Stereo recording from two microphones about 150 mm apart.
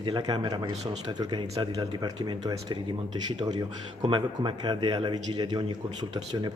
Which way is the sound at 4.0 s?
30° right (ahead or behind).